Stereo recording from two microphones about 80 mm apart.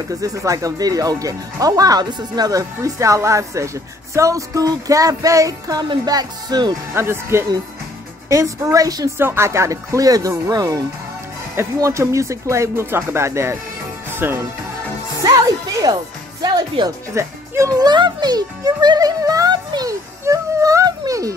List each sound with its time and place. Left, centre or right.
0.1 s speech: right
6.9 s speech: right
9.2 s speech: right
15.2 s speech: right
16.4 s speech: right
17.1 s speech: right
17.7 s speech: right
19.9 s music: right